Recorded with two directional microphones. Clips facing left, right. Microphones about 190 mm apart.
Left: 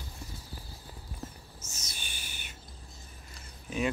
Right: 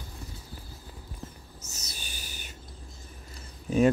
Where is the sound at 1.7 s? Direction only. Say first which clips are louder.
Right 3 dB; 40° right (ahead or behind).